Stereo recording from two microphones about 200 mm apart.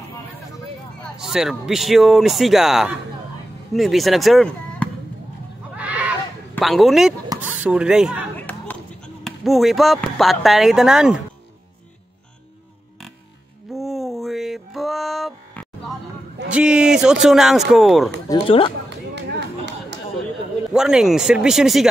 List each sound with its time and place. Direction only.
1.1 s speech: centre (ahead or behind)
5.8 s neigh: 5° right (ahead or behind)
6.6 s speech: centre (ahead or behind)
8.4 s a sound: 10° left (ahead or behind)
9.2 s speech: centre (ahead or behind)
13.7 s a sound: centre (ahead or behind)
16.5 s speech: 5° right (ahead or behind)
18.3 s speech: 25° left (ahead or behind)
18.9 s run: 60° right (ahead or behind)
20.7 s speech: centre (ahead or behind)